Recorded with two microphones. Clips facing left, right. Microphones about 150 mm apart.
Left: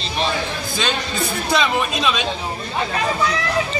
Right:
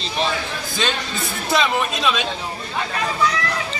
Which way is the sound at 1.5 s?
Centre (ahead or behind).